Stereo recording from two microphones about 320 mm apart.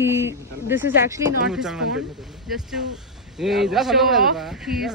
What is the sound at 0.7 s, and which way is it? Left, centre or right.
A man's voice, centre.